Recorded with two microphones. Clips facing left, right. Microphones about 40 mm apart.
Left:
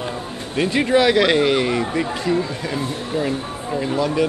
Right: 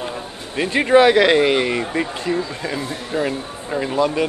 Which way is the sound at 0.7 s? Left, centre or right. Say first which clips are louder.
Right 4 dB; centre.